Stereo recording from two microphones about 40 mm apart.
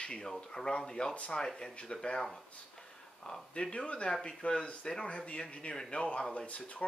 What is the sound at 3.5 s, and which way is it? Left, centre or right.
Speech, left.